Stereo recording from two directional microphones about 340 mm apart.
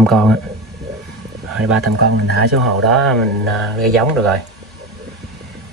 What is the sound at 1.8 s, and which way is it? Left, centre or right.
Speech, right.